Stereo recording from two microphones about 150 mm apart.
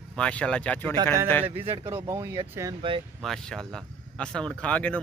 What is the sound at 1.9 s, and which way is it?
Speech, 20° right (ahead or behind).